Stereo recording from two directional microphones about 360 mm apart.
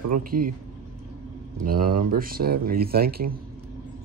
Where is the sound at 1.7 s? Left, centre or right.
Right.